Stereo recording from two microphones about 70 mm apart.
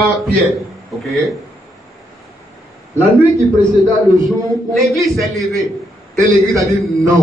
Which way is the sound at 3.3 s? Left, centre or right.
Right.